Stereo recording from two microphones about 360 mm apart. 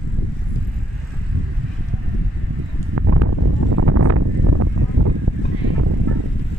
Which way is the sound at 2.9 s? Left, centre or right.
Right.